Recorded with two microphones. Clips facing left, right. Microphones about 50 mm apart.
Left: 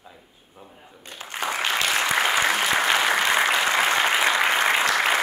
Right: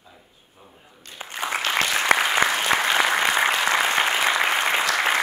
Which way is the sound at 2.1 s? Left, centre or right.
Right.